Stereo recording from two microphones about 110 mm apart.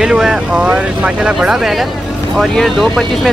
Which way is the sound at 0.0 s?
5° right (ahead or behind).